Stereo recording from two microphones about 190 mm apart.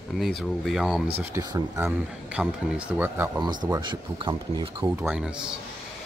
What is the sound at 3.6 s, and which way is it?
Speech, 20° right (ahead or behind).